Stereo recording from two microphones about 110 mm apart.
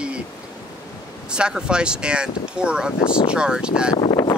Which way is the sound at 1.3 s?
10° right (ahead or behind).